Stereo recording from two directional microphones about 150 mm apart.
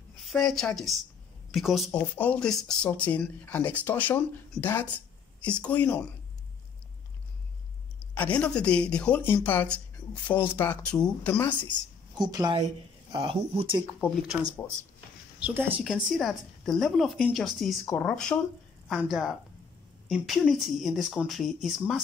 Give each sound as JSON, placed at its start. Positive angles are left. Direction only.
{"t": 0.2, "sound": "a woman's voice", "side_deg": 0}
{"t": 1.9, "sound": "speech", "side_deg": 10}
{"t": 8.2, "sound": "speech", "side_deg": 10}
{"t": 12.2, "sound": "a woman's voice", "side_deg": -25}
{"t": 13.1, "sound": "speech", "side_deg": -35}
{"t": 15.3, "sound": "speech", "side_deg": -10}
{"t": 15.8, "sound": "a woman's voice", "side_deg": 0}